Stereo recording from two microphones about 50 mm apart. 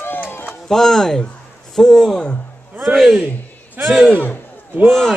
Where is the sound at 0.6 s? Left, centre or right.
Centre.